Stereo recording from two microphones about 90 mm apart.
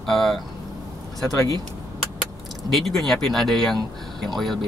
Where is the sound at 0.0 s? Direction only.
5° left (ahead or behind).